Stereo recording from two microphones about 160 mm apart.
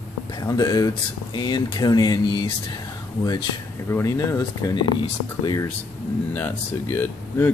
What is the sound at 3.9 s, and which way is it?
Speech, 20° left (ahead or behind).